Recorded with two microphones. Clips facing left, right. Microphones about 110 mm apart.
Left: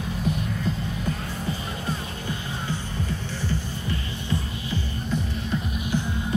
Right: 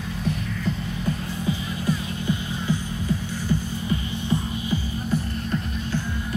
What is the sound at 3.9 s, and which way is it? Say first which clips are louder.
Music: right 4 dB; 20° right (ahead or behind).